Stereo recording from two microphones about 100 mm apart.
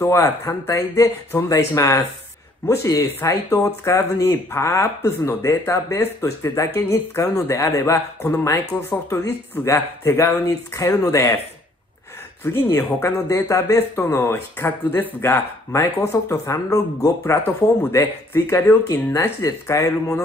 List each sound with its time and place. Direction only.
0.0 s speech: 30° left (ahead or behind)
12.7 s speech: 30° left (ahead or behind)